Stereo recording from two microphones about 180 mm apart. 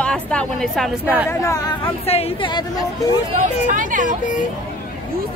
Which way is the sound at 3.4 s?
45° right (ahead or behind).